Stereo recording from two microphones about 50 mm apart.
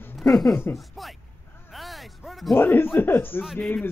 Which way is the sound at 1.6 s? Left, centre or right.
Centre.